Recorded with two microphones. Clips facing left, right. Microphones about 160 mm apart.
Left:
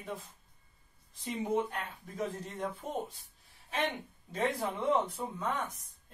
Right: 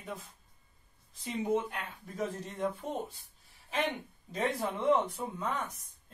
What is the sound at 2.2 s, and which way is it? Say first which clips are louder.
Speech: right 1 dB; centre (ahead or behind).